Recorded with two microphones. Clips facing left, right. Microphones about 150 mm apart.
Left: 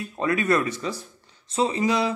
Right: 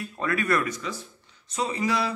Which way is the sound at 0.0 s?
20° left (ahead or behind).